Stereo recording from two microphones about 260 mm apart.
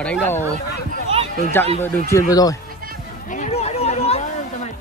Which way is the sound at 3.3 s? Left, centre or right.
Left.